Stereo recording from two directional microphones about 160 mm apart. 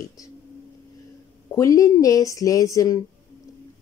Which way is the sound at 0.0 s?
20° left (ahead or behind).